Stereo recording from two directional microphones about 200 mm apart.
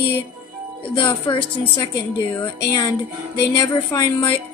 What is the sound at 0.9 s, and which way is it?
Speech, 25° left (ahead or behind).